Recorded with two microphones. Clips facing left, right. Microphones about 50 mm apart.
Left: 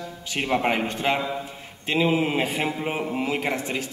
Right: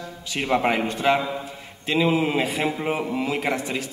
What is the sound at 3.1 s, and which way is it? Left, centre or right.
Speech, left.